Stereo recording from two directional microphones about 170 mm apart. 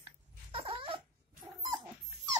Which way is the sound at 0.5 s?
35° right (ahead or behind).